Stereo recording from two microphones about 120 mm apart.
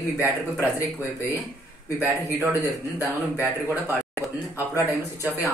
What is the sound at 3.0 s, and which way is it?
Speech, 20° left (ahead or behind).